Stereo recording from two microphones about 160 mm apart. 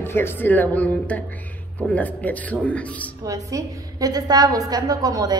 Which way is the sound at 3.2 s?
20° right (ahead or behind).